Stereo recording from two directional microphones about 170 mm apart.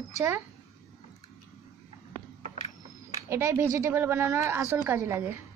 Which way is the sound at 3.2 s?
15° right (ahead or behind).